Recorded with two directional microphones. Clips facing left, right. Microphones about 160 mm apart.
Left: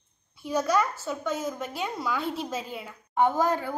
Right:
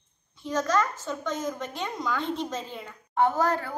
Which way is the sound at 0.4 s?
10° left (ahead or behind).